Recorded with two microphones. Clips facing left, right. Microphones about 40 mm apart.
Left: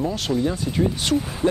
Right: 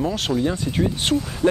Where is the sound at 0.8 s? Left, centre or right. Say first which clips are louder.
Left 1 dB; right.